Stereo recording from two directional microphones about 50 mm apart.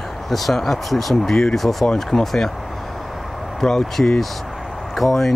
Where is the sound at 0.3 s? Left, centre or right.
Centre.